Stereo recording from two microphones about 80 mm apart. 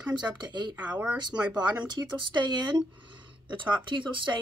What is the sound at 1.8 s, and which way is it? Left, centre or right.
Speech, right.